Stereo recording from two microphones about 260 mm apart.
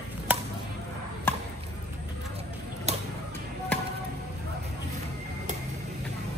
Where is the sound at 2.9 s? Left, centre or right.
Right.